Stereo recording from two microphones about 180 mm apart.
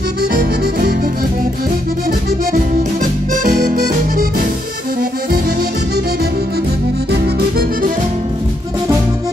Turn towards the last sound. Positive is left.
turn(degrees=-60)  # may be behind; listen again after turning